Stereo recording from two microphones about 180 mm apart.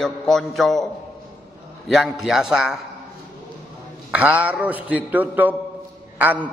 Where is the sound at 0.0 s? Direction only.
Centre (ahead or behind).